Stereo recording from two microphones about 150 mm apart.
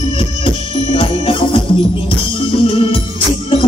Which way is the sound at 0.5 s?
35° left (ahead or behind).